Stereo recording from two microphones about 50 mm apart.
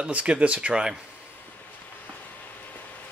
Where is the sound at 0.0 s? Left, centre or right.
Right.